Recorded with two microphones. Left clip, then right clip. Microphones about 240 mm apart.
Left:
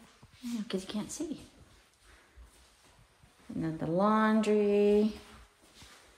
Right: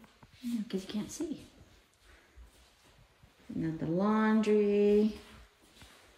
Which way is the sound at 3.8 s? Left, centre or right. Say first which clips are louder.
Left 4 dB; centre.